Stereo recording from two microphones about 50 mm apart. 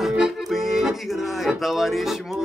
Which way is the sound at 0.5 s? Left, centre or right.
Centre.